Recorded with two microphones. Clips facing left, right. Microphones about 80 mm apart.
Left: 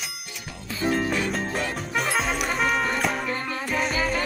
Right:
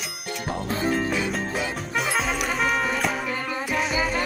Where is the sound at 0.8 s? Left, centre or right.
Centre.